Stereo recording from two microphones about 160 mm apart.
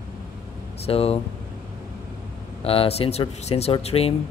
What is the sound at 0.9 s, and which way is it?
Speech, 40° left (ahead or behind).